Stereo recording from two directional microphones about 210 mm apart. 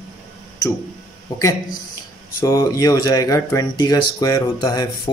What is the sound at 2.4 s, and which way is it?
Speech, 15° left (ahead or behind).